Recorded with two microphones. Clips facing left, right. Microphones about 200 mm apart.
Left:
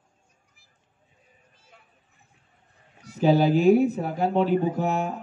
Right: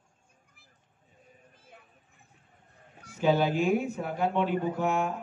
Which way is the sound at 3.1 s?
35° left (ahead or behind).